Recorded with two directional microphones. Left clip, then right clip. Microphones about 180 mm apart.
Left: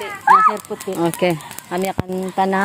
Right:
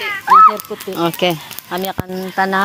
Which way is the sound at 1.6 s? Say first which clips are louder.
Even; 15° left (ahead or behind).